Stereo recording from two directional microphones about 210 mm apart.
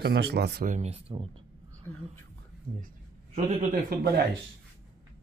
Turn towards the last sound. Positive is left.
turn(degrees=-40)  # may be behind; listen again after turning